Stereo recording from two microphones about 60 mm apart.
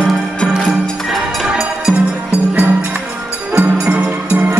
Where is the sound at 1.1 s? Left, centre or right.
Centre.